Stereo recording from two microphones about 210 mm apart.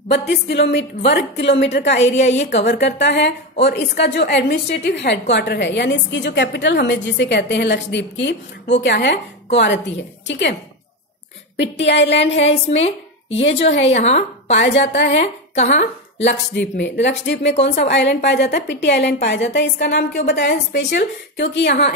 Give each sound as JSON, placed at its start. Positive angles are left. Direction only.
{"t": 0.1, "sound": "a woman's voice", "side_deg": 50}
{"t": 2.1, "sound": "a woman's voice", "side_deg": 35}
{"t": 2.8, "sound": "a woman's voice", "side_deg": 55}
{"t": 11.5, "sound": "a woman's voice", "side_deg": 55}
{"t": 12.4, "sound": "a woman's voice", "side_deg": 30}
{"t": 16.2, "sound": "a woman's voice", "side_deg": 55}